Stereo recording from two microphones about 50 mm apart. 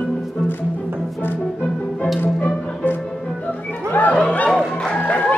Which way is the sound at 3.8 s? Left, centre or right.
Left.